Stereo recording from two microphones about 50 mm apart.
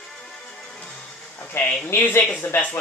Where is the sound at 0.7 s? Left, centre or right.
Centre.